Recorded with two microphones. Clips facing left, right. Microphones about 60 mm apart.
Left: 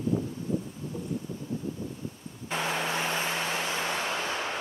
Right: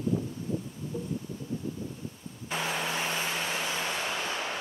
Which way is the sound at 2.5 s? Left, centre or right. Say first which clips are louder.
Left 2 dB; left.